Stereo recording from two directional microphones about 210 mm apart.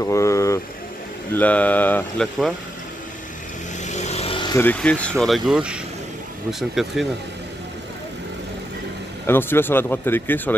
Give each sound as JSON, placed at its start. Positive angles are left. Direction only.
{"t": 0.0, "sound": "speech", "side_deg": 15}
{"t": 3.8, "sound": "vehicle", "side_deg": 35}
{"t": 4.6, "sound": "speech", "side_deg": 5}
{"t": 9.2, "sound": "speech", "side_deg": 10}